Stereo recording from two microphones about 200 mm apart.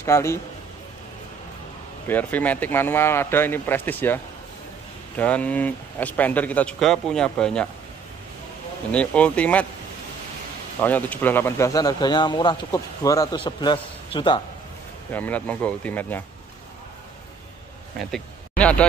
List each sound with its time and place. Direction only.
0.0 s speech: 15° left (ahead or behind)
2.0 s speech: 10° left (ahead or behind)
8.9 s speech: 5° left (ahead or behind)
10.8 s speech: 10° left (ahead or behind)
15.1 s speech: 10° left (ahead or behind)
17.9 s speech: 5° left (ahead or behind)